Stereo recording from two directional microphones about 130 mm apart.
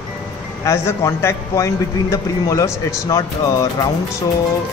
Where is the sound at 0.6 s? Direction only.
20° left (ahead or behind).